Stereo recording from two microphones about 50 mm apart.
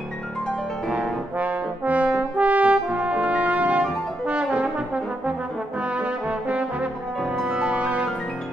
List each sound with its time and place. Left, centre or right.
0.9 s brass instrument: right
5.8 s trombone: right
7.6 s music: right